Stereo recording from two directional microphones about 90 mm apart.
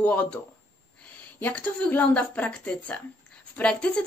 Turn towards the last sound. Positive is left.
turn(degrees=15)  # may be behind; listen again after turning